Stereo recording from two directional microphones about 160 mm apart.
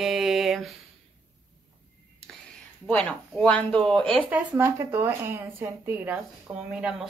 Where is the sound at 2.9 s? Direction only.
5° left (ahead or behind).